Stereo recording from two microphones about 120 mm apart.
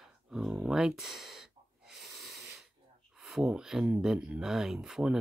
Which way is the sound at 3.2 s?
5° right (ahead or behind).